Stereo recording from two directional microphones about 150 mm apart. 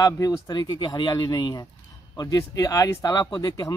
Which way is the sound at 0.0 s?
25° left (ahead or behind).